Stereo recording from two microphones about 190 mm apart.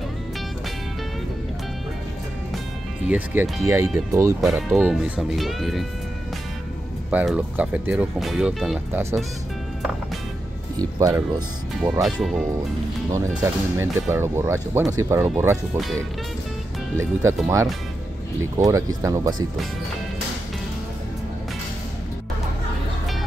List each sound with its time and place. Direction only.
3.1 s speech: 10° right (ahead or behind)
4.4 s speech: 5° right (ahead or behind)
7.1 s speech: 5° right (ahead or behind)
10.8 s speech: 15° right (ahead or behind)
12.0 s speech: centre (ahead or behind)
16.9 s speech: 15° right (ahead or behind)
18.4 s speech: 15° right (ahead or behind)